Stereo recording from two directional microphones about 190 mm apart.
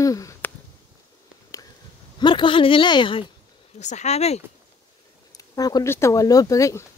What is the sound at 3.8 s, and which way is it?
Speech, 40° left (ahead or behind).